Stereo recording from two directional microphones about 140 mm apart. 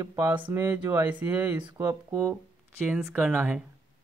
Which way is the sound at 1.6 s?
30° right (ahead or behind).